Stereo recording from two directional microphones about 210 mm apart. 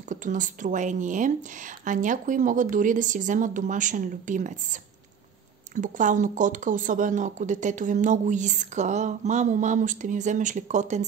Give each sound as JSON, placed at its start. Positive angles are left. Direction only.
{"t": 0.1, "sound": "speech", "side_deg": -35}
{"t": 5.8, "sound": "speech", "side_deg": -35}